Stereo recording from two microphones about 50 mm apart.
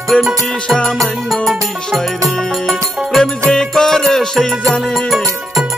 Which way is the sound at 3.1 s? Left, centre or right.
Centre.